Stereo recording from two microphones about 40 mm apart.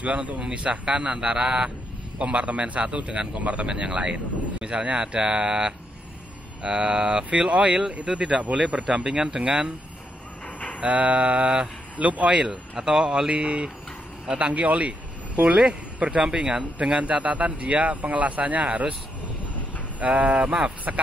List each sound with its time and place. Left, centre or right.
0.0 s a man's voice: right
8.2 s a man's voice: centre
10.8 s a man's voice: right
16.3 s a man's voice: right
17.0 s speech: right
20.0 s a man's voice: right